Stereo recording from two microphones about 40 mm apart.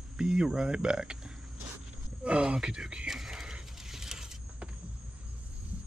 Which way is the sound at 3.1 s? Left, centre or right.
Centre.